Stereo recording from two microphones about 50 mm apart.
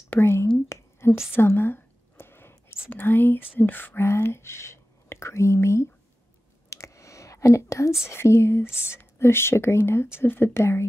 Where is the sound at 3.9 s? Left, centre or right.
Left.